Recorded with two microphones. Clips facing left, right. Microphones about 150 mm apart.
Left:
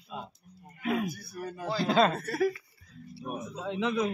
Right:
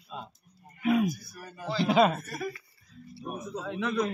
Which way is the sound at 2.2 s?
65° left (ahead or behind).